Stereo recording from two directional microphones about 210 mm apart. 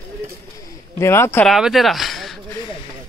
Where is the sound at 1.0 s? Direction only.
10° left (ahead or behind).